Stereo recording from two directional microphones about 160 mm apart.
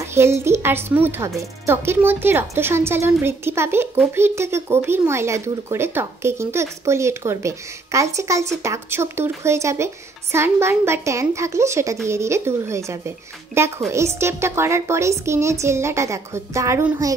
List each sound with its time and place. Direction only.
0.0 s speech: 15° right (ahead or behind)